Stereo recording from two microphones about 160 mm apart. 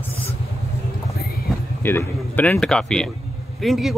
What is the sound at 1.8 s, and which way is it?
Speech, 10° left (ahead or behind).